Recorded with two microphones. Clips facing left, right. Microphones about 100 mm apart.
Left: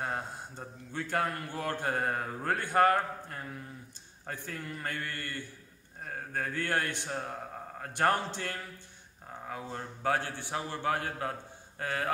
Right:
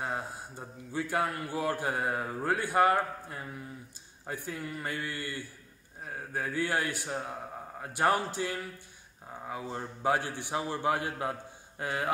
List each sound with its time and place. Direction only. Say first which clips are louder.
0.0 s a man's voice: even; 5° right (ahead or behind)